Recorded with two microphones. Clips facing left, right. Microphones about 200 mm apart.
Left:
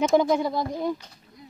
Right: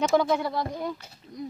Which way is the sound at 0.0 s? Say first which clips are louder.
Left 3 dB; 20° left (ahead or behind).